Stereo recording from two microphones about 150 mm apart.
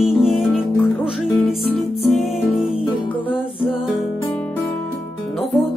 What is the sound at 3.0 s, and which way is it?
Music, 35° left (ahead or behind).